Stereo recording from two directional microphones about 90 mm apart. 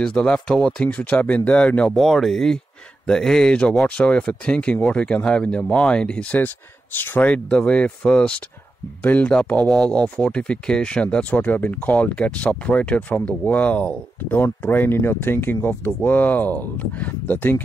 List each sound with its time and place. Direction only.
0.0 s speech: 10° left (ahead or behind)
2.0 s speech: centre (ahead or behind); by 17.6 s 20° left (ahead or behind)